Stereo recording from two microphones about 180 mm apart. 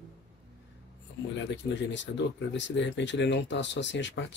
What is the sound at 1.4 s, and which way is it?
Speech, 85° left.